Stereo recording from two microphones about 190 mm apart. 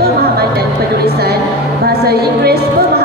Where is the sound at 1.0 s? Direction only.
55° right (ahead or behind).